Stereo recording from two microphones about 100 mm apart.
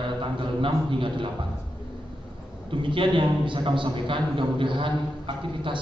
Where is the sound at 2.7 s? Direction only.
60° right (ahead or behind).